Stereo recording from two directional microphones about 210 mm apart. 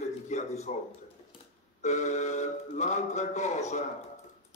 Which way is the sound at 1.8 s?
35° left (ahead or behind).